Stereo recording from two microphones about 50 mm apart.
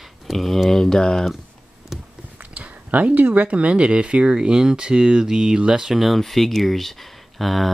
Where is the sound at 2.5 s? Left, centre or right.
Right.